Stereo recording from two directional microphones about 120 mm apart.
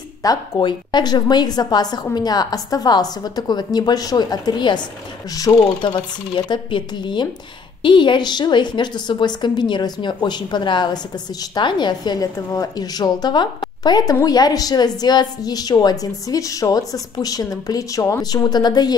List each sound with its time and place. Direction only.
0.2 s a woman's voice: 35° left (ahead or behind)